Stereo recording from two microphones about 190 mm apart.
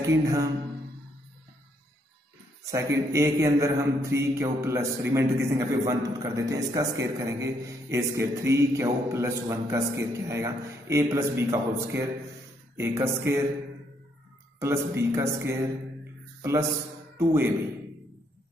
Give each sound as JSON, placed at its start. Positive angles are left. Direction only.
{"t": 0.0, "sound": "a man's voice", "side_deg": -15}
{"t": 3.1, "sound": "a man's voice", "side_deg": -15}
{"t": 14.6, "sound": "a man's voice", "side_deg": -15}
{"t": 16.3, "sound": "a sound", "side_deg": -15}
{"t": 17.2, "sound": "a man's voice", "side_deg": -15}